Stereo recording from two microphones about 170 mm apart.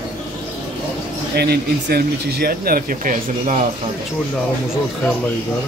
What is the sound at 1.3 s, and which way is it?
Speech, 70° right (ahead or behind).